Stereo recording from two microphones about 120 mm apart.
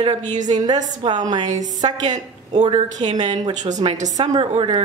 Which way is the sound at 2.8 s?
75° right (ahead or behind).